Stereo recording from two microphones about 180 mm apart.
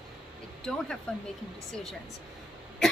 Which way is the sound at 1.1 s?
5° left (ahead or behind).